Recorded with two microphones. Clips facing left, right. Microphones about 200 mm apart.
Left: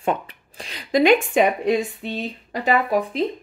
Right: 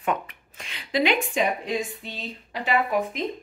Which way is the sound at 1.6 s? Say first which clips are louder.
Left 8 dB; 60° left (ahead or behind).